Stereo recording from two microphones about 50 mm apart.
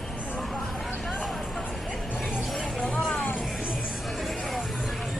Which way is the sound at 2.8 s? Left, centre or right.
Left.